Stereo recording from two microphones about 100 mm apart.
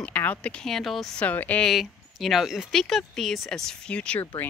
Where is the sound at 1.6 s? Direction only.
Centre (ahead or behind).